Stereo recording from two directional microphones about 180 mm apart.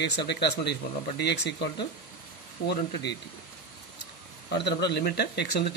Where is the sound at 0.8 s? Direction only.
50° left (ahead or behind).